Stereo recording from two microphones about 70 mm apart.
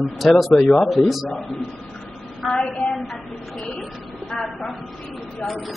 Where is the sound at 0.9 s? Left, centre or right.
Centre.